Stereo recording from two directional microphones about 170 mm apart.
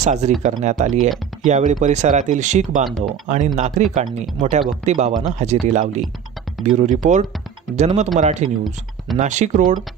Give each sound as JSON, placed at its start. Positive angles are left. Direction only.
{"t": 0.0, "sound": "speech", "side_deg": -45}